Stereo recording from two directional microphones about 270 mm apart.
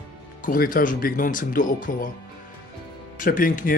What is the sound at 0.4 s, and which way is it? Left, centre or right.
Speech, left.